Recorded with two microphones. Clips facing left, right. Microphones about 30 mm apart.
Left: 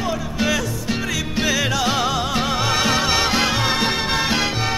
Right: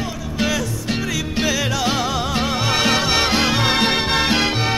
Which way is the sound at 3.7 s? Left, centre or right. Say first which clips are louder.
Right 2 dB; right.